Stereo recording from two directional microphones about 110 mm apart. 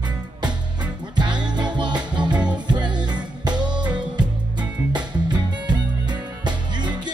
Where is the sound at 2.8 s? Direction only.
40° right (ahead or behind).